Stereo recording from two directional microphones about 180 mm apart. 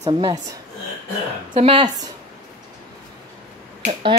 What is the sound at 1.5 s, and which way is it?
Speech, 30° right (ahead or behind).